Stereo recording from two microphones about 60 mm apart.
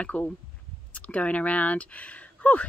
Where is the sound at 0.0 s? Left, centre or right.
Left.